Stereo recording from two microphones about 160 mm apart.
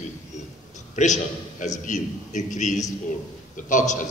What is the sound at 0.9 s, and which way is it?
A man's voice, 50° left (ahead or behind).